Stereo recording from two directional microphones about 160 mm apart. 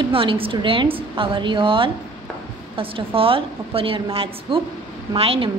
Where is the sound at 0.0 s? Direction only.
35° right (ahead or behind).